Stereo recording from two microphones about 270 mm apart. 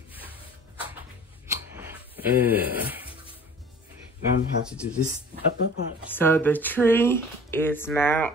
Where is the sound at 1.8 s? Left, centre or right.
Centre.